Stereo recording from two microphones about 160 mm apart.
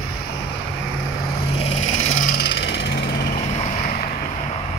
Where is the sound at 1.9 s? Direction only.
55° left (ahead or behind).